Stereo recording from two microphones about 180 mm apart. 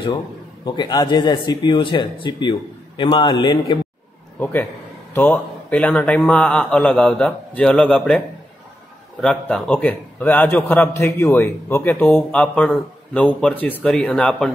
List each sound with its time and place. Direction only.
0.7 s a man's voice: 25° left (ahead or behind)
4.4 s a man's voice: 10° left (ahead or behind)
9.2 s a man's voice: 5° left (ahead or behind)